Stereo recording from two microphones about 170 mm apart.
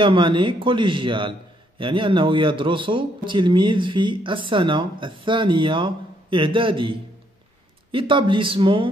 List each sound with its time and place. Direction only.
0.0 s speech: 30° right (ahead or behind)